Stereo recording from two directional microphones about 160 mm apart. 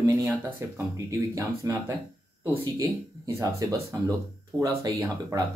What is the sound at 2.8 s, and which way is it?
Speech, 20° right (ahead or behind).